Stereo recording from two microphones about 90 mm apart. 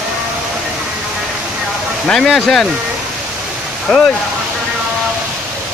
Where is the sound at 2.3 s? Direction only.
5° left (ahead or behind).